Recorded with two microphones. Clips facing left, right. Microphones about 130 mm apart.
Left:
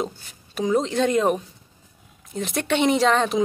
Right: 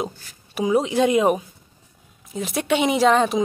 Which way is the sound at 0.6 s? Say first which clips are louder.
Right 2 dB; 10° right (ahead or behind).